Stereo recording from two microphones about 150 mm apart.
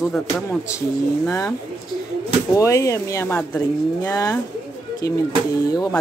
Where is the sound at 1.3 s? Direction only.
20° left (ahead or behind).